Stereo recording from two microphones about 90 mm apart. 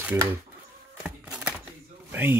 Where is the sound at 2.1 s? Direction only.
25° right (ahead or behind).